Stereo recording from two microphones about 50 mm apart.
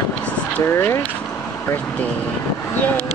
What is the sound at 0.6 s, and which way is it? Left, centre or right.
Speech, left.